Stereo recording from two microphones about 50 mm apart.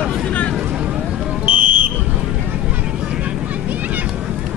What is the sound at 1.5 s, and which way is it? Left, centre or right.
Fire alarm, right.